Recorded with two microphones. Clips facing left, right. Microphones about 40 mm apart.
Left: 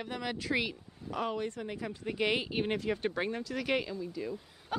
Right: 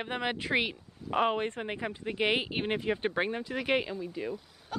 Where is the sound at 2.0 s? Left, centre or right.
Right.